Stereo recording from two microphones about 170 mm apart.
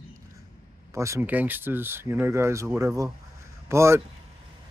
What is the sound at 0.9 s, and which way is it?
Speech, 15° right (ahead or behind).